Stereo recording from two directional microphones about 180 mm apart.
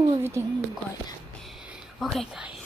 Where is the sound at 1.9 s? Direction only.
Centre (ahead or behind).